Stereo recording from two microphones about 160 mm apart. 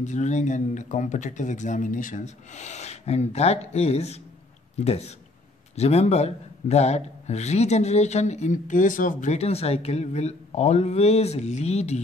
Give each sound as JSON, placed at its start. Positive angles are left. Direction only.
{"t": 0.0, "sound": "speech", "side_deg": 50}